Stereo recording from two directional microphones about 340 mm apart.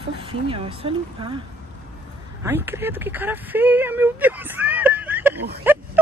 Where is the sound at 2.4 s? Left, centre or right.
Centre.